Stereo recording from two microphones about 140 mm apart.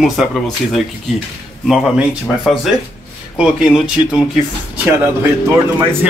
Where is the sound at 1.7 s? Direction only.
Centre (ahead or behind).